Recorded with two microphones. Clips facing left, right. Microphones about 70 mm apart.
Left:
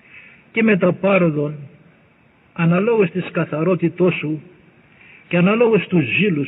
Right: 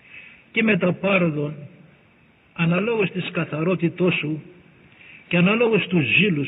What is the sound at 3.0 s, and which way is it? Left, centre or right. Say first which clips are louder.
Speech: left 6 dB; left.